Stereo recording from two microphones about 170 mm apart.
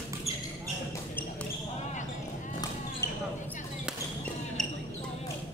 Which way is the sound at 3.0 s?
15° left (ahead or behind).